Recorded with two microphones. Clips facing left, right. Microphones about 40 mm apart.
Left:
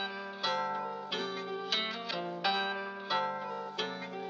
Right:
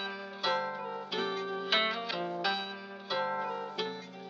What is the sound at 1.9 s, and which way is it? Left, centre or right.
Music, centre.